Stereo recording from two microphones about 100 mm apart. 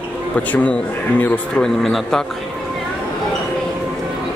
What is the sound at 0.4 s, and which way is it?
Speech, 15° left (ahead or behind).